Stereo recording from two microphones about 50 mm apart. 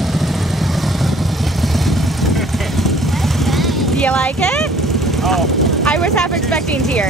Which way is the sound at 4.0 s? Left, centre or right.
Centre.